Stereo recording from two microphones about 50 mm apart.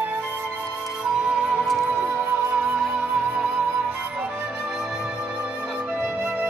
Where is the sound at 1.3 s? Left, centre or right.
Right.